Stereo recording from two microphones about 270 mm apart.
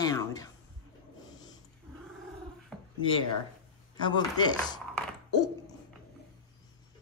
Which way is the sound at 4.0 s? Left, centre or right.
Centre.